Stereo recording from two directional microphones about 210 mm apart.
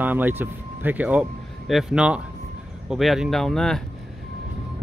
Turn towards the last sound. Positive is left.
turn(degrees=0)  # may be behind; listen again after turning